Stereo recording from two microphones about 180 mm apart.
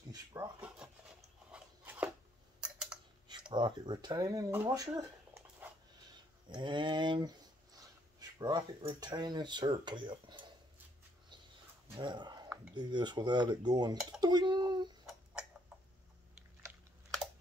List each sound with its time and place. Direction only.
0.1 s drawer open or close: 20° right (ahead or behind)
0.6 s dog: 5° right (ahead or behind)
1.5 s a sound: 10° right (ahead or behind)
2.6 s typing: 5° right (ahead or behind)
3.5 s speech: 25° right (ahead or behind)
12.0 s speech: 25° right (ahead or behind)